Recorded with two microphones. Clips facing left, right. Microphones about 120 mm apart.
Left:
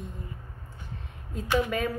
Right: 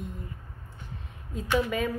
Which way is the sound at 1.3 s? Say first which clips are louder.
Even; centre (ahead or behind).